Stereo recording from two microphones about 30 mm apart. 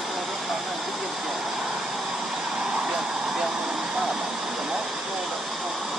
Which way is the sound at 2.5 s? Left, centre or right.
Right.